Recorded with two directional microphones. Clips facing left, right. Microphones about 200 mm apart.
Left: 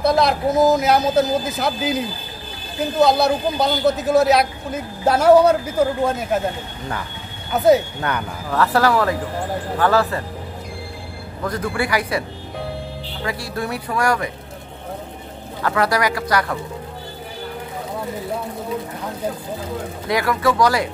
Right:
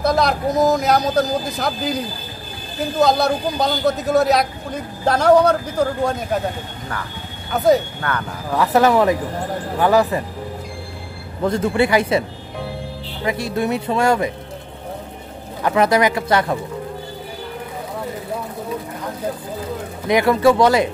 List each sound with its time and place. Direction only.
0.0 s speech: centre (ahead or behind)
3.0 s speech: centre (ahead or behind)
7.5 s speech: centre (ahead or behind)
8.1 s speech: 20° left (ahead or behind)
8.5 s speech: 15° right (ahead or behind)
11.4 s speech: 25° right (ahead or behind)
15.6 s speech: 20° right (ahead or behind)
20.1 s speech: 25° right (ahead or behind)